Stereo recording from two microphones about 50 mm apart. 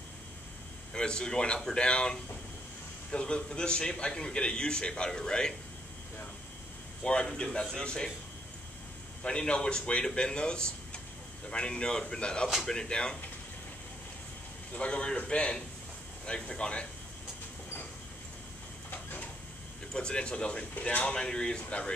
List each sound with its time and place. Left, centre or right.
0.9 s a man's voice: centre
7.0 s a man's voice: centre
9.2 s a man's voice: centre
14.7 s speech: left
19.9 s speech: centre